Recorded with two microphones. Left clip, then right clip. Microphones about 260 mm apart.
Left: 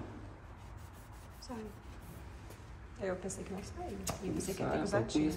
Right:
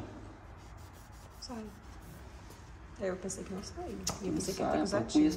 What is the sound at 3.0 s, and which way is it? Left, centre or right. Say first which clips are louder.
A woman's voice: right 2 dB; centre.